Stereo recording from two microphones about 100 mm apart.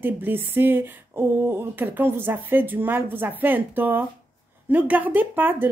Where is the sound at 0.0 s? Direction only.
20° right (ahead or behind).